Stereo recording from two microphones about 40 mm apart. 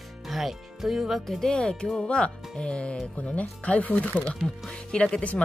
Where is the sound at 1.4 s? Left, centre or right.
Centre; by 4.1 s left.